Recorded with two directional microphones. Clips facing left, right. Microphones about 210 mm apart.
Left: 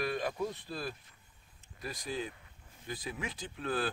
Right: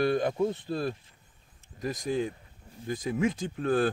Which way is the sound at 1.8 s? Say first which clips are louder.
Right 9 dB; 45° right (ahead or behind).